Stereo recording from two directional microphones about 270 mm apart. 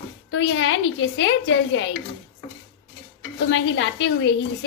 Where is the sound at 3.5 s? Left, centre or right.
Left.